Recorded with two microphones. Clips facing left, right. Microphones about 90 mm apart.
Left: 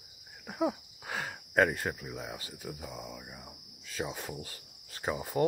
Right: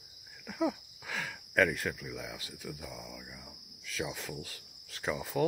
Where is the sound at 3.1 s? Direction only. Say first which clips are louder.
Left 2 dB; 30° left (ahead or behind).